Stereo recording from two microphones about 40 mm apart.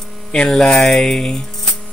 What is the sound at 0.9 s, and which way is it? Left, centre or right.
Music, centre.